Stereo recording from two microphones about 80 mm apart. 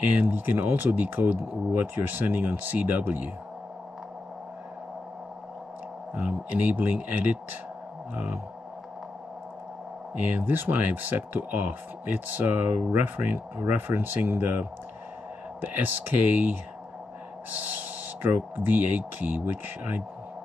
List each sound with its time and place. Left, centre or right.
0.0 s speech: centre
6.2 s speech: right
10.3 s speech: right
15.8 s speech: right
18.2 s speech: right